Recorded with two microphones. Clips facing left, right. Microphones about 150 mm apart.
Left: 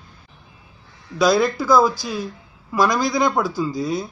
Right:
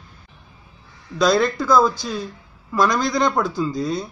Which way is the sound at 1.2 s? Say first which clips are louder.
Left 1 dB; 5° left (ahead or behind).